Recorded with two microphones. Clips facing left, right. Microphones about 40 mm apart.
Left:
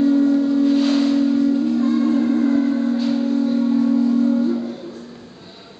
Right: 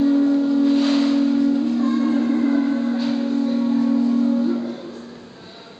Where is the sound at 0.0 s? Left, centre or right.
Centre.